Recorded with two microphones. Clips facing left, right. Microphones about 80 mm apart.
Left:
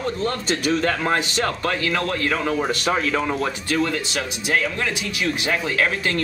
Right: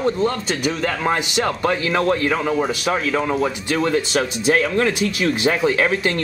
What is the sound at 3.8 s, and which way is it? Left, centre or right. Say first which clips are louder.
Speech: right 5 dB; right.